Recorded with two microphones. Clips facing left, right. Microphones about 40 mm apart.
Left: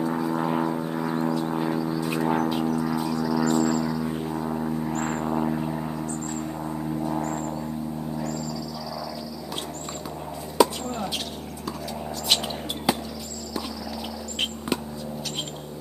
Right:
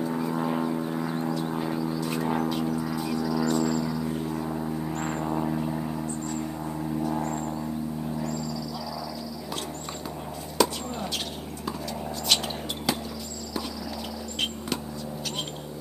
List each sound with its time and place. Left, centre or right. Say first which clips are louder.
0.0 s vehicle: left 2 dB; centre
2.0 s music: left 4 dB; centre
2.7 s didgeridoo: left 3 dB; centre
4.0 s didgeridoo: left 2 dB; centre
4.9 s a sound: left 2 dB; centre
10.6 s basketball bounce: left 4 dB; centre
12.9 s basketball bounce: left 4 dB; centre